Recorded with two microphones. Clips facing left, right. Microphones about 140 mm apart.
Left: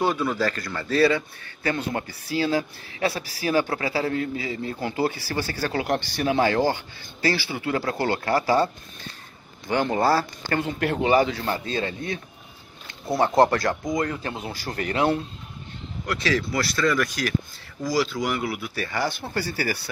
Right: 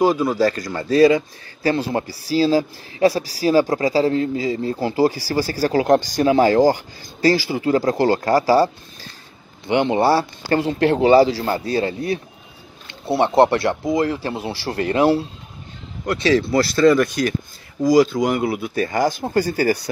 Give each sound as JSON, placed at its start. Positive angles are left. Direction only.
{"t": 0.0, "sound": "speech", "side_deg": -35}
{"t": 0.9, "sound": "speech", "side_deg": -15}
{"t": 1.6, "sound": "speech", "side_deg": -35}
{"t": 9.7, "sound": "speech", "side_deg": -25}
{"t": 13.0, "sound": "speech", "side_deg": -25}
{"t": 18.4, "sound": "speech", "side_deg": -25}
{"t": 18.8, "sound": "speech", "side_deg": -45}